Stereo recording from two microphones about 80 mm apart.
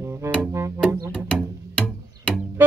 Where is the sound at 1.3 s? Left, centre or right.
Centre.